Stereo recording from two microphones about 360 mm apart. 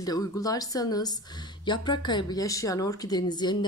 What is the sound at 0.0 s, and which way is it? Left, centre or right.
Speech, centre.